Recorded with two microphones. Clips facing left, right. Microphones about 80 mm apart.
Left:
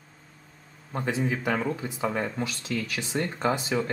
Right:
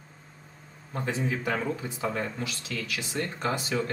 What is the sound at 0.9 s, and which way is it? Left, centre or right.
Speech, centre.